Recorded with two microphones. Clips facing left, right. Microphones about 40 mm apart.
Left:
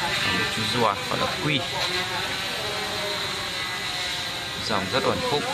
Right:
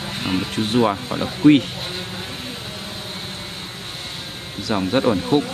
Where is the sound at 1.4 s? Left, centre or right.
Right.